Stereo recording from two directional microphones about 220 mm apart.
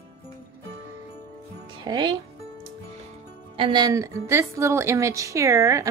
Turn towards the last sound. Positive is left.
turn(degrees=-15)  # may be behind; listen again after turning